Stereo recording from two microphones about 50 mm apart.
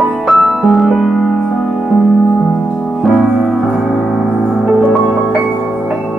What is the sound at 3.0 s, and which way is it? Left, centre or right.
Music, centre.